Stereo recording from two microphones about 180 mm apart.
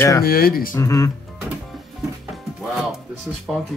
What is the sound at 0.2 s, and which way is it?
Speech, 55° left (ahead or behind).